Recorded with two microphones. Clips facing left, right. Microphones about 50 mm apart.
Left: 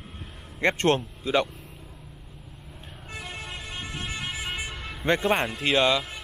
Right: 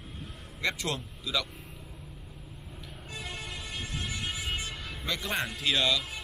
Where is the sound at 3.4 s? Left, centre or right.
Left.